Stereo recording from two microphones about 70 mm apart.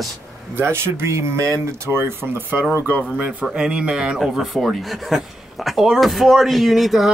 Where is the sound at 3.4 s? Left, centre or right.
Centre.